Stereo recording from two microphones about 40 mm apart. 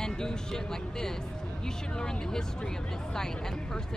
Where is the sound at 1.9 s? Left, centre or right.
Centre.